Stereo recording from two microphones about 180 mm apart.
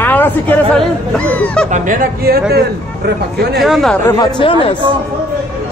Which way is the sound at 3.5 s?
Centre (ahead or behind).